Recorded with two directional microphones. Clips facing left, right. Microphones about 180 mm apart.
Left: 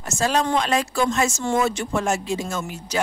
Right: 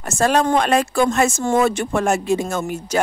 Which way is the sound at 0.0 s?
55° right (ahead or behind).